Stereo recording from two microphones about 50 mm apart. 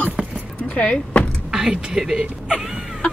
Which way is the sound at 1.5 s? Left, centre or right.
Centre.